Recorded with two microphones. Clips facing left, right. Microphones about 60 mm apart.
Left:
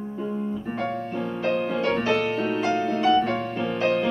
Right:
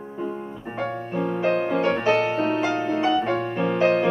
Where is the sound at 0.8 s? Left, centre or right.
Right.